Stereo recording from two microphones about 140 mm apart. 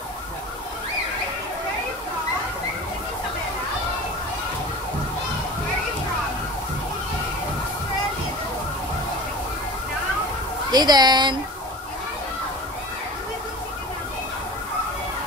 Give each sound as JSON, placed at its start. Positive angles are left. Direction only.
{"t": 10.7, "sound": "speech", "side_deg": -30}